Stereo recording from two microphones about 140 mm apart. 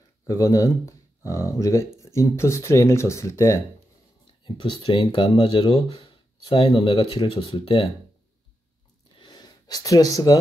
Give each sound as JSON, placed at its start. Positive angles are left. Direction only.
{"t": 0.3, "sound": "speech", "side_deg": 25}
{"t": 4.5, "sound": "speech", "side_deg": 35}
{"t": 9.2, "sound": "gasp", "side_deg": 30}